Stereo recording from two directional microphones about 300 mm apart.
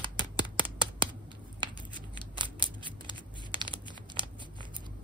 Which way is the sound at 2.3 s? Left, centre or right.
Centre.